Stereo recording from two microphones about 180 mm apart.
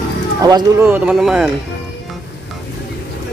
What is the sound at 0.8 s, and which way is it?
Speech, 10° right (ahead or behind).